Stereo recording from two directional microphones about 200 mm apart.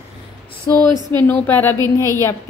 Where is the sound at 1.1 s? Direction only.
10° left (ahead or behind).